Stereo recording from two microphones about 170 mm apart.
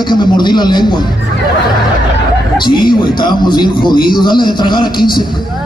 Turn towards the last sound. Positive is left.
turn(degrees=25)  # may be behind; listen again after turning